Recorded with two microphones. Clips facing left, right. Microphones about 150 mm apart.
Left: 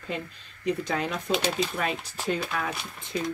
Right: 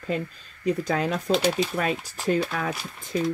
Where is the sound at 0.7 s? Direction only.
40° right (ahead or behind).